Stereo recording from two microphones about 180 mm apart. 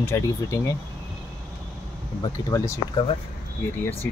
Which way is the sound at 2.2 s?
20° left (ahead or behind).